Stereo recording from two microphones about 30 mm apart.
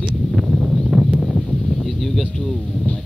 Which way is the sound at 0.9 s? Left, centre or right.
Centre.